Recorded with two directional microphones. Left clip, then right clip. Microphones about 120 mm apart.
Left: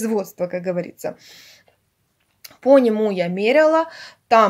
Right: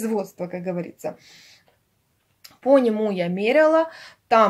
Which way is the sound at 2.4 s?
40° left (ahead or behind).